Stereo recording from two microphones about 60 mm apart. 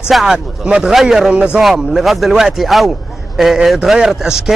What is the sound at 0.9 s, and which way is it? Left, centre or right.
Speech, centre.